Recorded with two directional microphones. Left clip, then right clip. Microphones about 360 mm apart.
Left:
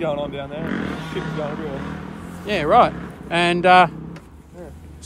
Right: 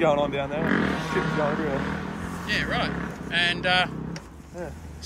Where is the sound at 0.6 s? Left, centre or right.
Right.